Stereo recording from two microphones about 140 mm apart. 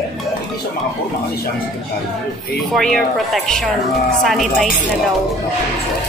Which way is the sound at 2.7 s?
Centre (ahead or behind).